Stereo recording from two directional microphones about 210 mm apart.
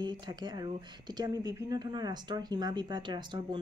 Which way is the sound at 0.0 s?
20° right (ahead or behind).